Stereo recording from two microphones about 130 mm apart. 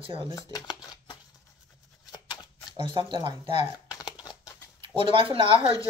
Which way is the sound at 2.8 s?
40° right (ahead or behind).